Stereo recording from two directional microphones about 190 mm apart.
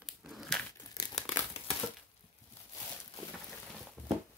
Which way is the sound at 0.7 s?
20° left (ahead or behind).